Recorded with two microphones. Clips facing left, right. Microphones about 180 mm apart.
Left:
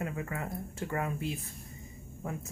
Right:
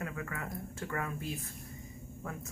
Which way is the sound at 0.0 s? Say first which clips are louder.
Left 3 dB; 25° left (ahead or behind).